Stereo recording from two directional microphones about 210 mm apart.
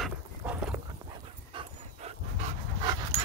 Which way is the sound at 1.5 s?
30° right (ahead or behind).